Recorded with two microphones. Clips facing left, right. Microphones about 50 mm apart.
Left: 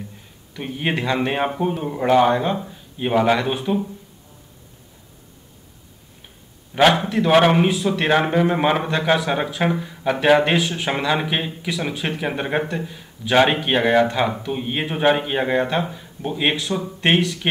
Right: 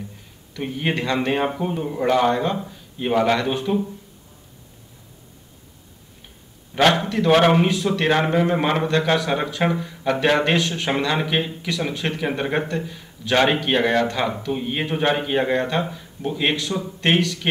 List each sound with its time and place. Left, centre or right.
0.6 s a man's voice: centre
6.7 s a sound: centre
7.1 s a man's voice: centre